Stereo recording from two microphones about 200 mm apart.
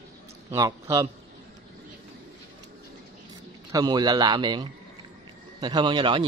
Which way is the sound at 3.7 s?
20° right (ahead or behind).